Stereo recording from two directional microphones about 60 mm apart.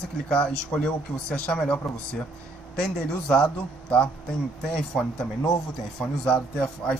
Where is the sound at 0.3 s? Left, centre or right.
Centre.